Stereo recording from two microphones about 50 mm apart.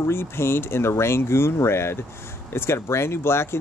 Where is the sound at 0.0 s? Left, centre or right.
Left.